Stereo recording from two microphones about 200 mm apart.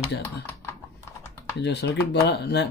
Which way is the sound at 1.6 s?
60° left (ahead or behind).